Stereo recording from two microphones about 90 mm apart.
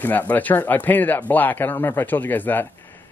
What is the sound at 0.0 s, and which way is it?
Speech, 20° left (ahead or behind).